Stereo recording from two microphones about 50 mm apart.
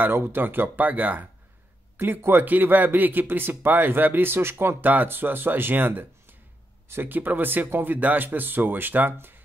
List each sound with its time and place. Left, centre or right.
0.0 s speech: right
2.0 s speech: right
4.8 s speech: right